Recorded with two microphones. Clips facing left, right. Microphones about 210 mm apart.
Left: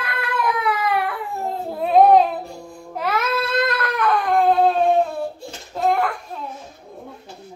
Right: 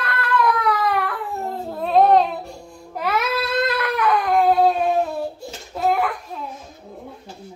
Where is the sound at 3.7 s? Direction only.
5° right (ahead or behind).